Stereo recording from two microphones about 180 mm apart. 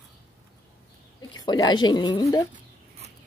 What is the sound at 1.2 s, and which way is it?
Speech, 20° left (ahead or behind).